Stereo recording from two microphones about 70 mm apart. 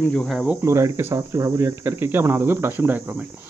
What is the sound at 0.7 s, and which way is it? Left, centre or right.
Speech, right.